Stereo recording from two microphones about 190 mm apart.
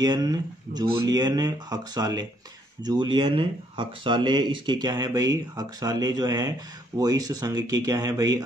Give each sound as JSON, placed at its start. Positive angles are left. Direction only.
{"t": 0.0, "sound": "speech", "side_deg": -20}